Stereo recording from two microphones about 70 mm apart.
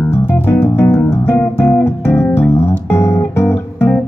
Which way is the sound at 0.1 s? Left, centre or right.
Left.